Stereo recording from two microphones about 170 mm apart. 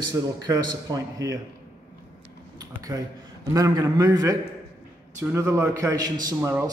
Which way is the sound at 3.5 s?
20° right (ahead or behind).